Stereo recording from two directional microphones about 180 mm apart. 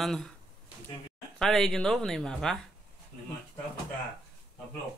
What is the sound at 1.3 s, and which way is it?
Speech, centre (ahead or behind).